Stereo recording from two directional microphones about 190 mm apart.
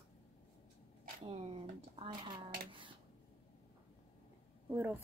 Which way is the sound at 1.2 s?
30° right (ahead or behind).